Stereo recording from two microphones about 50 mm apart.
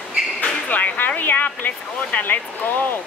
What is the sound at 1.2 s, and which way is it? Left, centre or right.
Speech, left.